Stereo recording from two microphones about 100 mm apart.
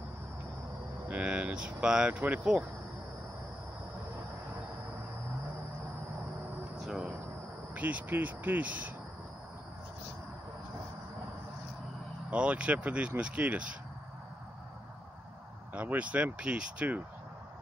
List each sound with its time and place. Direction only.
1.0 s speech: 15° right (ahead or behind)
6.8 s a sound: 5° right (ahead or behind)
7.7 s speech: 15° right (ahead or behind)
12.3 s speech: 10° right (ahead or behind)
15.7 s speech: 15° right (ahead or behind)